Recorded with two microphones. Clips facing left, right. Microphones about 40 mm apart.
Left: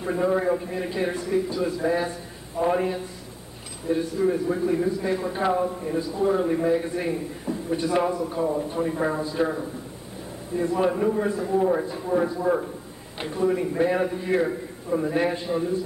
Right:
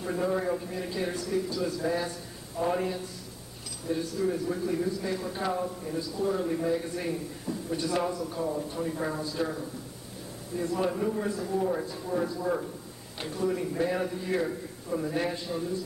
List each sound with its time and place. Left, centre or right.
0.0 s a man's voice: left